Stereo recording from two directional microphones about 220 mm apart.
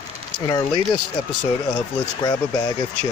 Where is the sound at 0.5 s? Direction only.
20° left (ahead or behind).